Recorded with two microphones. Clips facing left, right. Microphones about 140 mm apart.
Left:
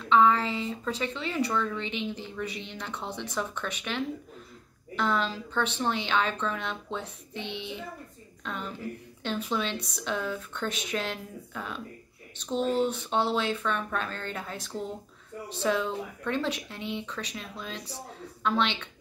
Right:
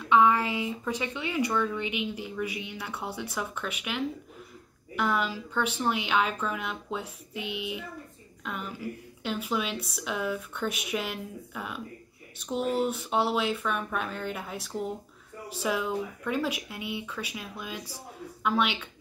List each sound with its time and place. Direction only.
0.0 s a woman's voice: 10° right (ahead or behind)